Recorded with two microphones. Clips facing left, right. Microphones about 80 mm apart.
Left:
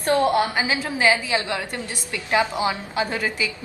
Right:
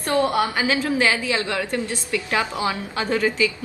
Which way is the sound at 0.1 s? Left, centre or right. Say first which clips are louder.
Left 1 dB; left.